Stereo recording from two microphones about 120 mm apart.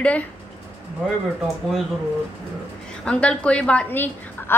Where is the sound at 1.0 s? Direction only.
Centre (ahead or behind).